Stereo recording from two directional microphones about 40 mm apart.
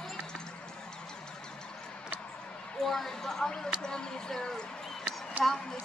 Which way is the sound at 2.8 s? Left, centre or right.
Centre.